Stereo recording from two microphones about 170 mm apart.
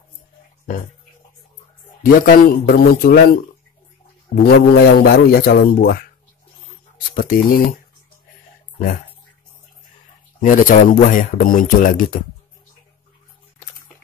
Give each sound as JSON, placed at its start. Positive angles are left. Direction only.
{"t": 2.0, "sound": "a man's voice", "side_deg": 55}
{"t": 4.4, "sound": "a man's voice", "side_deg": 65}
{"t": 7.2, "sound": "a man's voice", "side_deg": 60}
{"t": 10.4, "sound": "speech", "side_deg": 50}